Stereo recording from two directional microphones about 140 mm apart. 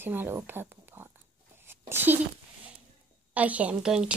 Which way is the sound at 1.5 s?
15° right (ahead or behind).